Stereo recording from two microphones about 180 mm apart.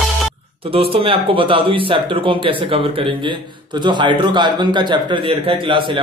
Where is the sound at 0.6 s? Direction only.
30° right (ahead or behind).